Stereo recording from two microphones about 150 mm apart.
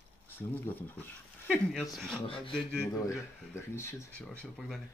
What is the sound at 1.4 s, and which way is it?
Speech, centre (ahead or behind).